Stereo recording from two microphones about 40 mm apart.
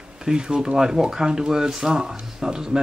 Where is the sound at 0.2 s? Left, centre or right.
Centre.